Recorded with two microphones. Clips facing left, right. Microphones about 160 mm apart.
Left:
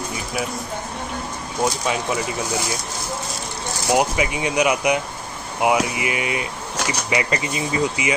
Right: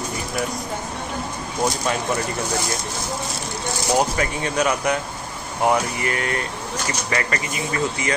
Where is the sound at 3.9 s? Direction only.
10° left (ahead or behind).